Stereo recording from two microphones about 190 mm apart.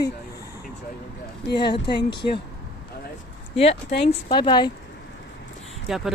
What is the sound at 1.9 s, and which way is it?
Speech, 60° left (ahead or behind).